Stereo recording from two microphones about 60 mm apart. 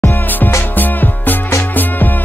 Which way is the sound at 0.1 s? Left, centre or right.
Left.